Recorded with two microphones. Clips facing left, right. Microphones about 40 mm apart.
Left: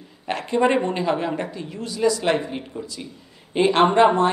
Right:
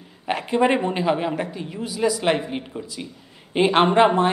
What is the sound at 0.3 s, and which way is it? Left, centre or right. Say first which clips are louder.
A woman's voice: even; centre.